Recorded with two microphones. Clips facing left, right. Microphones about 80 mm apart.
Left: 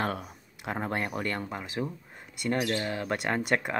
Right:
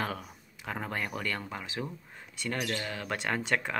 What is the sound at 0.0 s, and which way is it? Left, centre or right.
Speech, left.